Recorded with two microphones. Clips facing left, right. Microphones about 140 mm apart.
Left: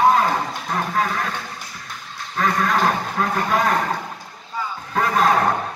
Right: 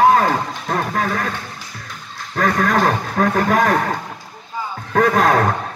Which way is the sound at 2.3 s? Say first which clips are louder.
Right 3 dB; 50° right (ahead or behind).